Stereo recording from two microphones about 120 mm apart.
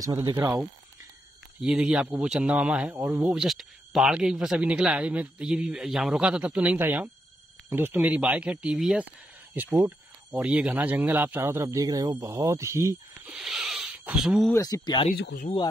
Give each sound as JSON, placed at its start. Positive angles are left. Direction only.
{"t": 0.0, "sound": "speech", "side_deg": -30}
{"t": 1.6, "sound": "speech", "side_deg": -5}
{"t": 3.3, "sound": "speech", "side_deg": -5}
{"t": 9.5, "sound": "speech", "side_deg": -15}
{"t": 13.4, "sound": "speech", "side_deg": 0}
{"t": 14.5, "sound": "speech", "side_deg": 30}